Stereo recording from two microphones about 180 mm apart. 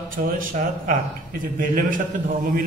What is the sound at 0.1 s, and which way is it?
A man's voice, 50° right (ahead or behind).